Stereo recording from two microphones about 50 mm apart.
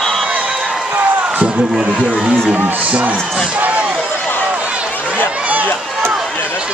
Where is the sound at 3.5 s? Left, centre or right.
Right.